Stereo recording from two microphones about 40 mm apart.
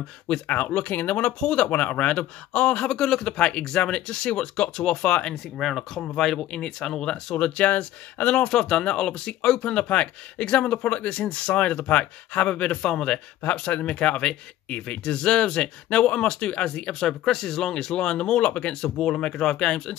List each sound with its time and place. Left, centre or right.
0.5 s speech: left
1.4 s speech: left
1.7 s speech: left
2.9 s speech: centre
5.3 s speech: centre
6.1 s speech: centre; by 8.5 s left
8.5 s speech: left
17.0 s speech: centre
17.9 s speech: left
18.8 s speech: centre